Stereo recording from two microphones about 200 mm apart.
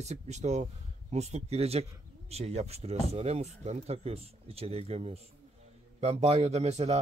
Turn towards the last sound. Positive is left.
turn(degrees=-35)  # may be behind; listen again after turning